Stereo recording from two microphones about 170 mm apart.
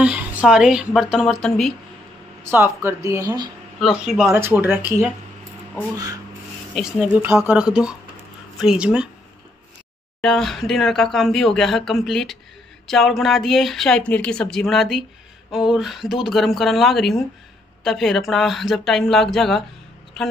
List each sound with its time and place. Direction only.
0.0 s speech: 5° right (ahead or behind)
2.4 s speech: 10° right (ahead or behind)
3.8 s speech: 5° right (ahead or behind)
6.7 s speech: 5° right (ahead or behind)
10.2 s speech: centre (ahead or behind)